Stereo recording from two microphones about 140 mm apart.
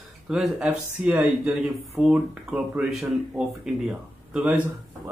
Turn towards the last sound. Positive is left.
turn(degrees=-5)  # may be behind; listen again after turning